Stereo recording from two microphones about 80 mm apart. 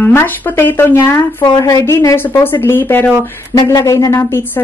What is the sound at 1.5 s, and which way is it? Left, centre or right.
Speech, left.